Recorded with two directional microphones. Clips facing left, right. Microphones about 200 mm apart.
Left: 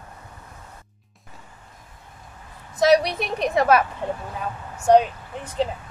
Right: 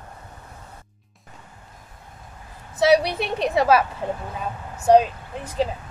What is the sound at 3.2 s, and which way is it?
Speech, 30° right (ahead or behind).